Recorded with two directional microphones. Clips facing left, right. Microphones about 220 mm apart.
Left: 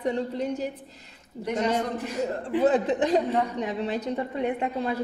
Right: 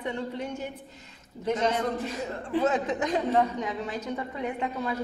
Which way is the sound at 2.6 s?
35° left (ahead or behind).